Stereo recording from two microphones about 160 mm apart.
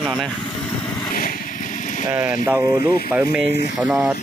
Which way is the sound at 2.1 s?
10° right (ahead or behind).